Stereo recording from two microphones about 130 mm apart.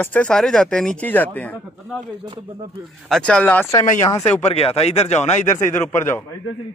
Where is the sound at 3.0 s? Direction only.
5° left (ahead or behind).